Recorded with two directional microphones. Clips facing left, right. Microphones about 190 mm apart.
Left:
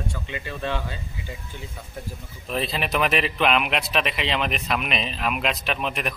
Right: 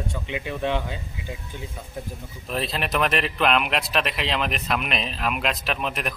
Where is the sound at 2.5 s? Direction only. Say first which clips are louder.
Left 1 dB; centre (ahead or behind).